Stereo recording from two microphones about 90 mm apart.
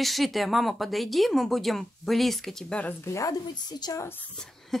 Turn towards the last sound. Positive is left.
turn(degrees=5)  # may be behind; listen again after turning